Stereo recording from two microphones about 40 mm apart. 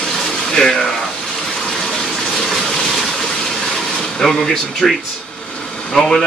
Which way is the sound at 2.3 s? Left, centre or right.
Centre.